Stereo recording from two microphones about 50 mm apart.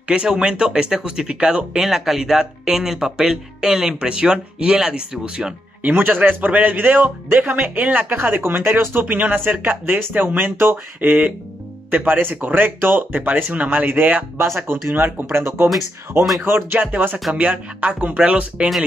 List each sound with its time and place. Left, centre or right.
0.1 s speech: centre
1.8 s speech: centre
5.8 s speech: right
11.0 s speech: right
17.3 s speech: right